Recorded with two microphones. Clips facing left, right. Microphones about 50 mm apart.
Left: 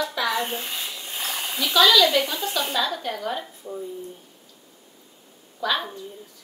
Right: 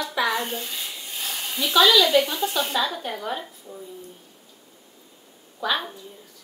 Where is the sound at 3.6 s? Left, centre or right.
Left.